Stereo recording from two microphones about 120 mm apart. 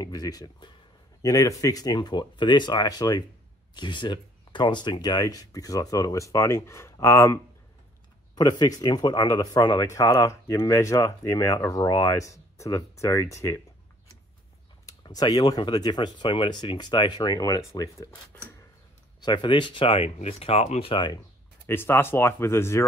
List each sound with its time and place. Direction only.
0.0 s speech: 30° left (ahead or behind)
8.4 s speech: 35° left (ahead or behind)
14.9 s speech: 35° left (ahead or behind)
19.2 s speech: 40° left (ahead or behind); by 20.9 s 65° left (ahead or behind)
20.9 s speech: 40° left (ahead or behind)
21.6 s speech: 20° left (ahead or behind)